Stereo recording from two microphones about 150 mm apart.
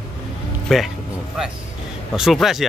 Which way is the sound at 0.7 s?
Centre (ahead or behind).